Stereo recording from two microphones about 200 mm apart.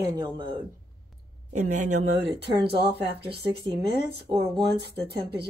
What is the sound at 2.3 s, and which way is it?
Speech, 55° right (ahead or behind).